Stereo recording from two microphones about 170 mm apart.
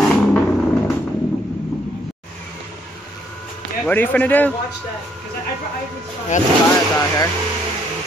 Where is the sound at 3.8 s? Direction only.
10° left (ahead or behind).